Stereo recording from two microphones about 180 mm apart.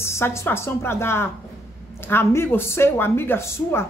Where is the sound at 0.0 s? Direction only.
15° left (ahead or behind).